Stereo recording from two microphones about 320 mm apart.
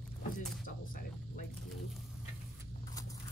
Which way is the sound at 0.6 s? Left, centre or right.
Left.